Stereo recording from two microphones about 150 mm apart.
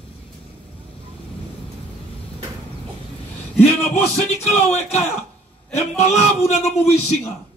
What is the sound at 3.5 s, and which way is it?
Speech, 45° left (ahead or behind).